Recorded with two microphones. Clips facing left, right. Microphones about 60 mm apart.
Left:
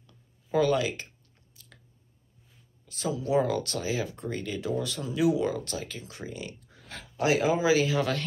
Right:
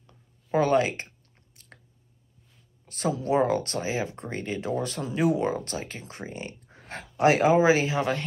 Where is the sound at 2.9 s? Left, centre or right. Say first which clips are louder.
Right 2 dB; right.